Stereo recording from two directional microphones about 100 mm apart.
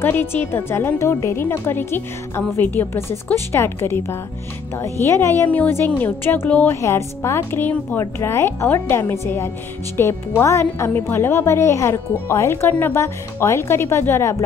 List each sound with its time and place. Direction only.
0.0 s a woman's voice: 20° left (ahead or behind)
6.8 s speech: 25° left (ahead or behind)